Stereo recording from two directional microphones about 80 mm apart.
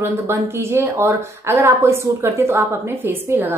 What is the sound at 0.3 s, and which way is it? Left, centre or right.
A woman's voice, right.